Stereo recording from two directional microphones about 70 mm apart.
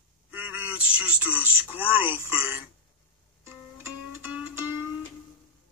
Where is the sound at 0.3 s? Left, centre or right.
Right.